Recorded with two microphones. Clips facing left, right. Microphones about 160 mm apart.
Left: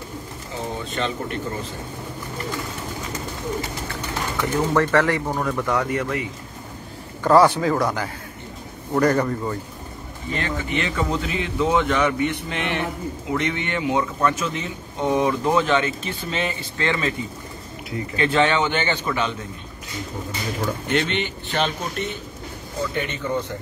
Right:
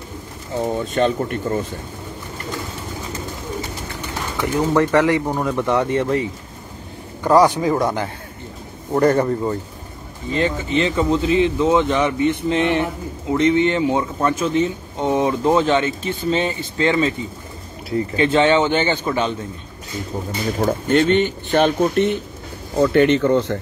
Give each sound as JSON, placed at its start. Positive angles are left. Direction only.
{"t": 0.9, "sound": "speech", "side_deg": -50}
{"t": 4.4, "sound": "speech", "side_deg": -15}
{"t": 7.2, "sound": "speech", "side_deg": -15}
{"t": 10.3, "sound": "a man's voice", "side_deg": -25}
{"t": 20.5, "sound": "speech", "side_deg": -45}
{"t": 22.8, "sound": "speech", "side_deg": -85}